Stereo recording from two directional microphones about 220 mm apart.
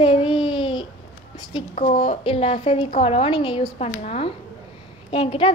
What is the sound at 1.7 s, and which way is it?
A woman's voice, 35° left (ahead or behind).